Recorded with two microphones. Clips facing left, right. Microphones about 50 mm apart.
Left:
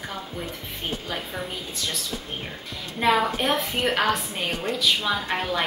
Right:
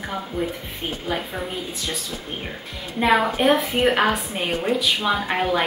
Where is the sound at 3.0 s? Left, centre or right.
Centre.